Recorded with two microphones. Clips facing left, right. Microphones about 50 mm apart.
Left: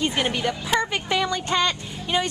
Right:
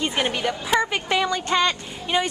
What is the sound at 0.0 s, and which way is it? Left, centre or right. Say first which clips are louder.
A woman's voice: even; centre.